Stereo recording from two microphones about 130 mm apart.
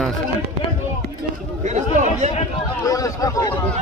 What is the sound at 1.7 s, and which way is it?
Speech, 60° right (ahead or behind).